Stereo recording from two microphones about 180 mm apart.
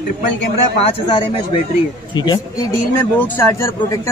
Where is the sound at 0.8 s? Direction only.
30° left (ahead or behind).